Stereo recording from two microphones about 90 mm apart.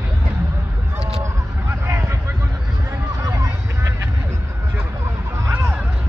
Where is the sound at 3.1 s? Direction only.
45° right (ahead or behind).